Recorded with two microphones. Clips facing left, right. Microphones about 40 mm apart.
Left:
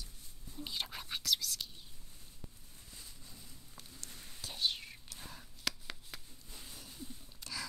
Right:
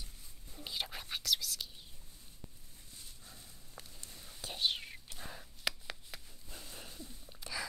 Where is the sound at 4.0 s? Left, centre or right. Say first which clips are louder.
Left 2 dB; right; by 6.2 s centre.